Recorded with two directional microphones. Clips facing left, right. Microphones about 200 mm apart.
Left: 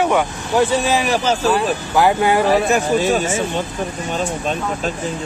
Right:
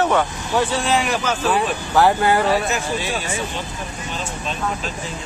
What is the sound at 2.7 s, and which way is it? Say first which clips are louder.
Speech: left 8 dB; 45° left (ahead or behind).